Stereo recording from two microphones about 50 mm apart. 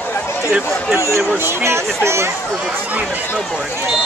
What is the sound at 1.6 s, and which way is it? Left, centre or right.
Speech, right.